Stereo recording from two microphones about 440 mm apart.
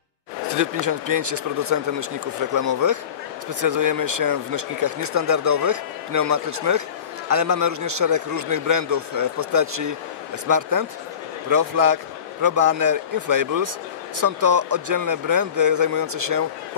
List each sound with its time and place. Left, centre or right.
0.5 s speech: right
1.3 s a man's voice: right
2.5 s a man's voice: right